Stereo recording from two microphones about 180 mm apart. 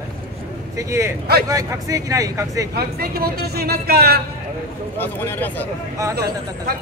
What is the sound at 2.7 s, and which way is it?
Speech, 60° right (ahead or behind).